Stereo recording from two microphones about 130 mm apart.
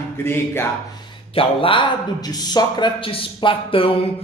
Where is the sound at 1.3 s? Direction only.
40° left (ahead or behind).